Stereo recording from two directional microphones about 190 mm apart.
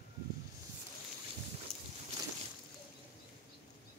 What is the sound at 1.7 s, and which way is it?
Boat, centre (ahead or behind).